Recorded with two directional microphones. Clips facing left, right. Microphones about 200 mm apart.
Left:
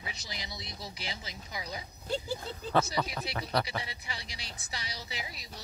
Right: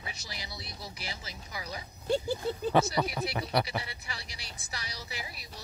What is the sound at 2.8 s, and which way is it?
Speech, 15° right (ahead or behind).